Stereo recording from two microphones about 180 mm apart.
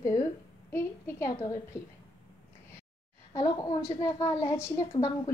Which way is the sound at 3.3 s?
20° left (ahead or behind).